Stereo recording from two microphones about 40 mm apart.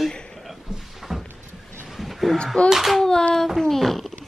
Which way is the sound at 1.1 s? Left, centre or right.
Centre.